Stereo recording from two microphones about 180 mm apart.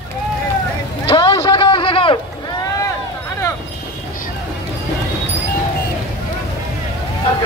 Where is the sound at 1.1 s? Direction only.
25° left (ahead or behind).